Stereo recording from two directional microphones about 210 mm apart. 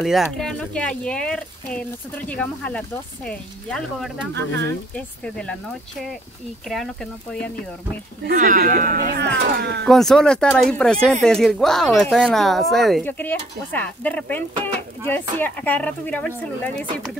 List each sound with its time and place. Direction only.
0.0 s speech: centre (ahead or behind)
4.3 s speech: 55° right (ahead or behind)
4.9 s speech: 5° left (ahead or behind)
8.3 s speech: 40° right (ahead or behind)
9.8 s speech: centre (ahead or behind)